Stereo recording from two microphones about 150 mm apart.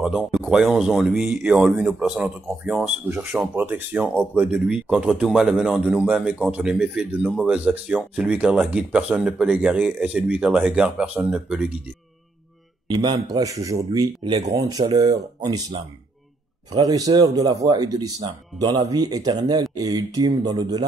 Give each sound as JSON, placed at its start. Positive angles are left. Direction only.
{"t": 0.0, "sound": "speech", "side_deg": -5}
{"t": 12.8, "sound": "speech", "side_deg": -30}
{"t": 16.8, "sound": "speech", "side_deg": -25}